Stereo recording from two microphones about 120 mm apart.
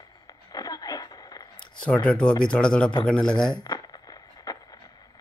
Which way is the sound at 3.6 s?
35° left (ahead or behind).